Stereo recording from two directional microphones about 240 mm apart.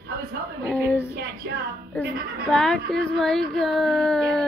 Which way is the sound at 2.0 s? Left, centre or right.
Centre.